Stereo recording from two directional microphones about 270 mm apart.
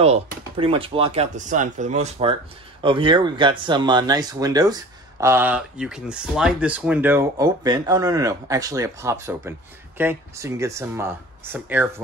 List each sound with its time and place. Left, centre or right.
0.0 s speech: right